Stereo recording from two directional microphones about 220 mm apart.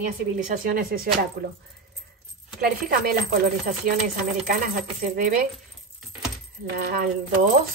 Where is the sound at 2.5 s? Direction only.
40° right (ahead or behind).